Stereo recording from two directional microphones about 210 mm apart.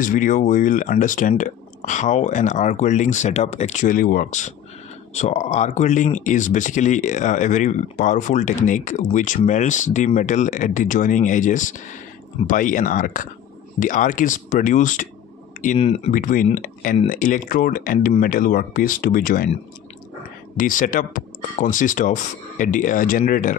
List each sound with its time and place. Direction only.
0.0 s speech: 40° left (ahead or behind)
20.5 s speech: 40° left (ahead or behind)